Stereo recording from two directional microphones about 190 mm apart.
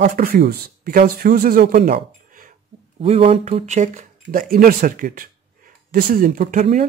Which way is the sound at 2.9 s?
30° right (ahead or behind).